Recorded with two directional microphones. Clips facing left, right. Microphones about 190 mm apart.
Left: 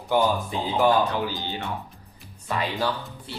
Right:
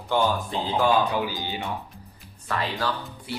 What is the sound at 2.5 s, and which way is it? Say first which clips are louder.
Speech: left 1 dB; 15° left (ahead or behind).